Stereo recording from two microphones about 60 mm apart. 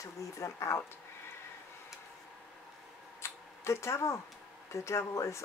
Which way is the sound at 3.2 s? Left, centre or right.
Left.